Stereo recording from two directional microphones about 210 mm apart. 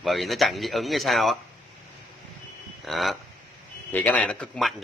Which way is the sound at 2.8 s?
Centre (ahead or behind).